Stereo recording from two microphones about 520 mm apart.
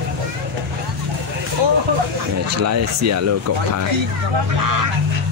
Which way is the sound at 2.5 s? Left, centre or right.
Right.